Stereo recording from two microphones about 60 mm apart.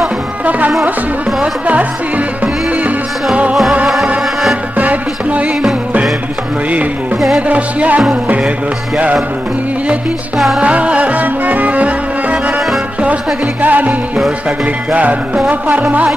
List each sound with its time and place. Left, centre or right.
0.5 s music: right
4.7 s music: right
7.3 s music: right
10.3 s music: centre
10.6 s music: right